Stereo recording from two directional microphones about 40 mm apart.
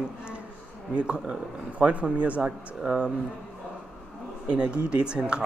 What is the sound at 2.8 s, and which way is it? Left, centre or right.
Speech, centre.